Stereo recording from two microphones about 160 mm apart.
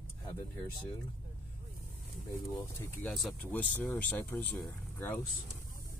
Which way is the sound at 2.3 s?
15° left (ahead or behind).